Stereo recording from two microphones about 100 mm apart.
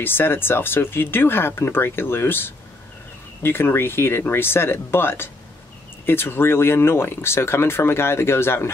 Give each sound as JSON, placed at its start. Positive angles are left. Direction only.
{"t": 0.0, "sound": "speech", "side_deg": 20}